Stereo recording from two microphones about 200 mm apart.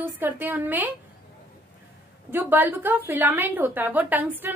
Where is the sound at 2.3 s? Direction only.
10° right (ahead or behind).